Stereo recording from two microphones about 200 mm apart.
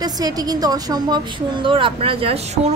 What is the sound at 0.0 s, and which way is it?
A woman's voice, 20° right (ahead or behind).